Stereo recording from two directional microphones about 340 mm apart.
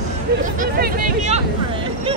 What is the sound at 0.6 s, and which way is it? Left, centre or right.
Vehicle, right.